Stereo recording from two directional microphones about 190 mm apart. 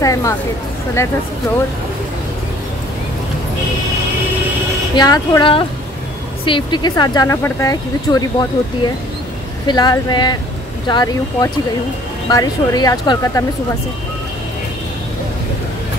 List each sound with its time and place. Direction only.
0.0 s speech: 15° left (ahead or behind)
4.9 s speech: 20° left (ahead or behind)